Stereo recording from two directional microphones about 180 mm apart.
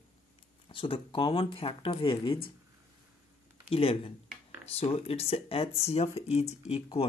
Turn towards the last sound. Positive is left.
turn(degrees=35)  # may be behind; listen again after turning